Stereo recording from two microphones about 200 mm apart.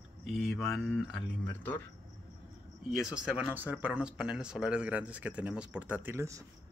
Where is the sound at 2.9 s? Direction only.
5° right (ahead or behind).